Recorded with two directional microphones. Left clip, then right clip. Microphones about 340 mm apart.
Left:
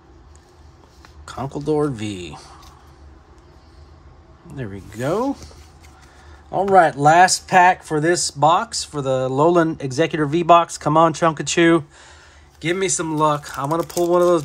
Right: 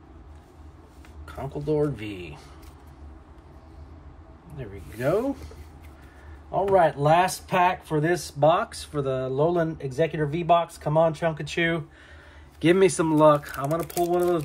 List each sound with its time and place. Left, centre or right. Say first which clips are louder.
1.2 s speech: left 6 dB; centre
4.6 s speech: left 6 dB; centre
12.5 s speech: right 2 dB; centre